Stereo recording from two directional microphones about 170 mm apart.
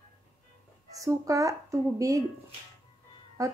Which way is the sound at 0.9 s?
20° right (ahead or behind).